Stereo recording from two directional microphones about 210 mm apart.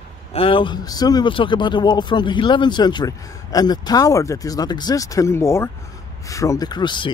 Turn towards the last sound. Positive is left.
turn(degrees=20)  # may be behind; listen again after turning